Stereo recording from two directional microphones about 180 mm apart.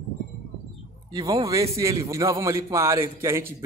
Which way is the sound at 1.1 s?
20° right (ahead or behind).